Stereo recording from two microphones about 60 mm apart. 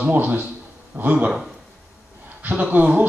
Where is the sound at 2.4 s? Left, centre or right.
Right.